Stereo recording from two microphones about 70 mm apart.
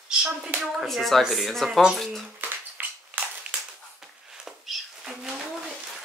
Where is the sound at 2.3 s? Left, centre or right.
Right.